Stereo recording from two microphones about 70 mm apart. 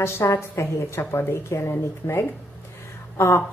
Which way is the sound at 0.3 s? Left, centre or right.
Left.